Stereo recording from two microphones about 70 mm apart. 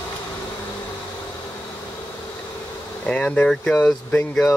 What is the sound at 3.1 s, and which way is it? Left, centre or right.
Speech, centre.